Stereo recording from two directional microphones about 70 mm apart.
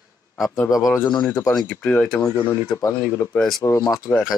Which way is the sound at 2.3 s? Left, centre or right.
Left.